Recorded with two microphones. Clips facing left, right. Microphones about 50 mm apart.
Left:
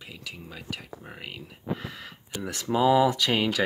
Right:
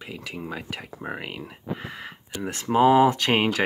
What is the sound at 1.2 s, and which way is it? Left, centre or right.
Speech, right.